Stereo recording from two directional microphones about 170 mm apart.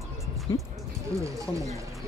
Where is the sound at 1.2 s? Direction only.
20° right (ahead or behind).